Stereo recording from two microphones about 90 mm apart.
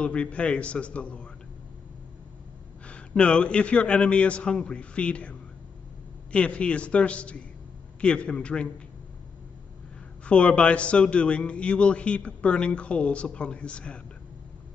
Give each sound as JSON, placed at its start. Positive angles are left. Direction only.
{"t": 0.0, "sound": "a man's voice", "side_deg": 15}
{"t": 2.9, "sound": "a man's voice", "side_deg": 10}
{"t": 10.2, "sound": "a man's voice", "side_deg": 15}